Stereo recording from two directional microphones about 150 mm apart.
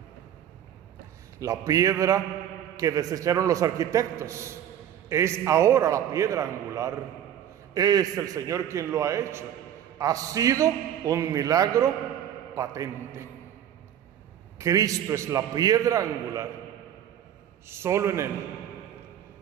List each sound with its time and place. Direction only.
1.4 s a man's voice: 20° right (ahead or behind)
14.6 s a man's voice: 20° right (ahead or behind)
17.6 s a man's voice: 15° right (ahead or behind)